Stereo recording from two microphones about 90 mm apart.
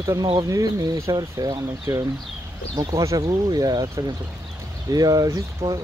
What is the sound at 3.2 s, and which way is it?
Speech, 50° right (ahead or behind).